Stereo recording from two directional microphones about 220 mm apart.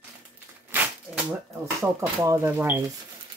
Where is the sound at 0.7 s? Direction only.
10° right (ahead or behind).